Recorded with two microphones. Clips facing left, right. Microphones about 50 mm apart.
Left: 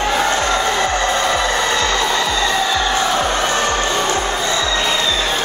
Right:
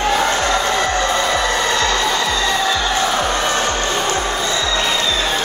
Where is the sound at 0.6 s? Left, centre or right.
Left.